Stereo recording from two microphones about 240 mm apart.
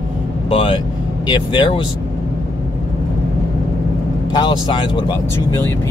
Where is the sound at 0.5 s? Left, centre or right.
Left.